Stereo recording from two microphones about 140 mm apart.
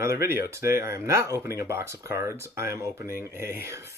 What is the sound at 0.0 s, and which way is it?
Speech, 20° right (ahead or behind).